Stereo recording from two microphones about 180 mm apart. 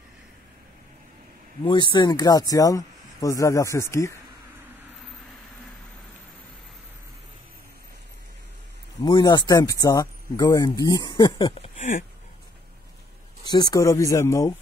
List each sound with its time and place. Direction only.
1.6 s speech: 25° left (ahead or behind)
9.0 s speech: 25° left (ahead or behind)
13.5 s speech: 20° left (ahead or behind)